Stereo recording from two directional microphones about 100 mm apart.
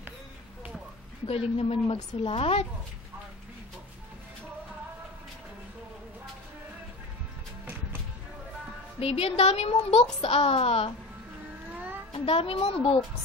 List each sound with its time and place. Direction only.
1.2 s a woman's voice: 75° left (ahead or behind)
9.0 s a woman's voice: 85° left
10.2 s a woman's voice: 75° left (ahead or behind)
11.7 s a sound: 15° right (ahead or behind)
12.1 s a woman's voice: 75° left (ahead or behind)